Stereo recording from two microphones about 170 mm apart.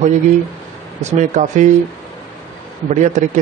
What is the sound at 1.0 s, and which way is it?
Speech, 45° right (ahead or behind).